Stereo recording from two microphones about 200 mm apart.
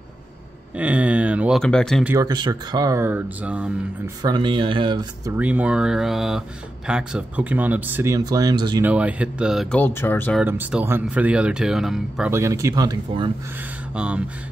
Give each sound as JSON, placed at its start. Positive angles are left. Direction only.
{"t": 0.7, "sound": "a sound", "side_deg": -5}
{"t": 2.0, "sound": "speech", "side_deg": -15}
{"t": 4.2, "sound": "speech", "side_deg": -25}
{"t": 5.4, "sound": "speech", "side_deg": -5}
{"t": 8.8, "sound": "speech", "side_deg": -5}
{"t": 10.4, "sound": "speech", "side_deg": -10}
{"t": 12.3, "sound": "speech", "side_deg": -15}
{"t": 13.9, "sound": "speech", "side_deg": -5}